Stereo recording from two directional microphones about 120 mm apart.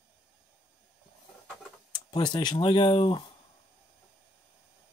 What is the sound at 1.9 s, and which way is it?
Speech, 40° left (ahead or behind).